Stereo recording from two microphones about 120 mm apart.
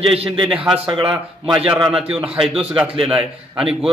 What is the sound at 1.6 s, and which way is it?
Speech, 10° right (ahead or behind).